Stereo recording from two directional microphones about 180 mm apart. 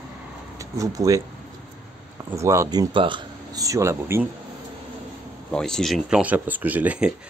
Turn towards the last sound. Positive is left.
turn(degrees=-10)  # may be behind; listen again after turning